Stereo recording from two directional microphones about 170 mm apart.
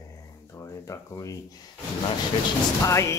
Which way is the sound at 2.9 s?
15° left (ahead or behind).